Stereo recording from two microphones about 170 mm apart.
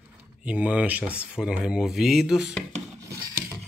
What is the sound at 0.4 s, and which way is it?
Speech, 10° right (ahead or behind).